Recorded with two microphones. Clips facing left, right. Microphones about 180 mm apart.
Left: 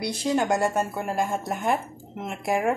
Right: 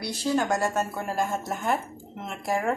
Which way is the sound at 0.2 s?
15° left (ahead or behind).